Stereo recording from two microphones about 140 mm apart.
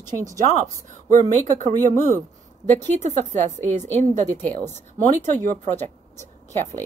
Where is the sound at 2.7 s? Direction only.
55° right (ahead or behind).